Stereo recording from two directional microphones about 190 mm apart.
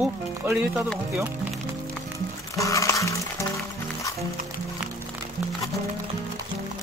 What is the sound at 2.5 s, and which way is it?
Music, 15° left (ahead or behind).